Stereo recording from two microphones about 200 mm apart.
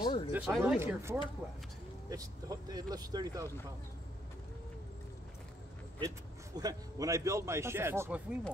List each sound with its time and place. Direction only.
0.0 s speech: 20° left (ahead or behind)
0.3 s a man's voice: 5° right (ahead or behind)
5.9 s a man's voice: 20° right (ahead or behind)